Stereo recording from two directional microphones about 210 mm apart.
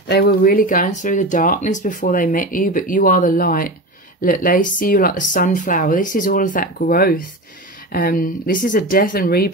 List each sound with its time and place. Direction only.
0.1 s speech: 45° left (ahead or behind)